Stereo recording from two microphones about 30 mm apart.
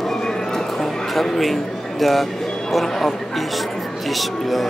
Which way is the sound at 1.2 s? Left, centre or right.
Centre.